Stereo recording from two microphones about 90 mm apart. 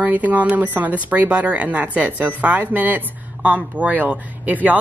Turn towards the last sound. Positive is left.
turn(degrees=-20)  # may be behind; listen again after turning